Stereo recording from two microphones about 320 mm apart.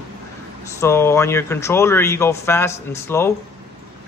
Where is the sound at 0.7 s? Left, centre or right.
Centre.